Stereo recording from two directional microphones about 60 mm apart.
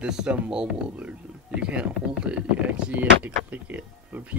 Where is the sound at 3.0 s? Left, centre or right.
Right.